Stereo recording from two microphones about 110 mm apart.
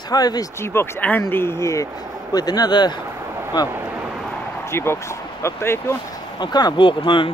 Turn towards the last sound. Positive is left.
turn(degrees=50)  # may be behind; listen again after turning